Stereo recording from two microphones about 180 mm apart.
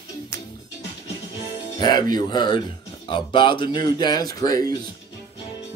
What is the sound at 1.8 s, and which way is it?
Speech, 25° left (ahead or behind).